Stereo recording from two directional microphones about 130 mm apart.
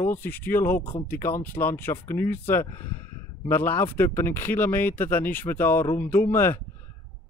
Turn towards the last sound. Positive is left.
turn(degrees=15)  # may be behind; listen again after turning